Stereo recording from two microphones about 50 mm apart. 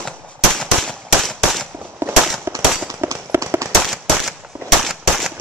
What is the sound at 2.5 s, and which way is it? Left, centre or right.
Firecracker, right.